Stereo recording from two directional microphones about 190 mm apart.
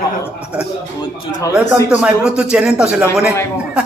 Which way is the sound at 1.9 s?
5° right (ahead or behind).